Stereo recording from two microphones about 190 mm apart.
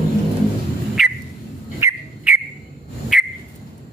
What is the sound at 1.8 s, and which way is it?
Bird, 10° right (ahead or behind).